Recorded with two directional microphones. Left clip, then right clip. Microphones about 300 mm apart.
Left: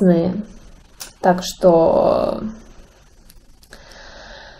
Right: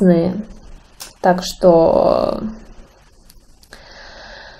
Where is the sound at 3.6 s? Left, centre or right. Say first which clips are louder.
Right 2 dB; centre.